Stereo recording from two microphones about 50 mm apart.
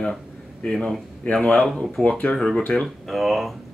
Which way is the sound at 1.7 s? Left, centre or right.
Centre.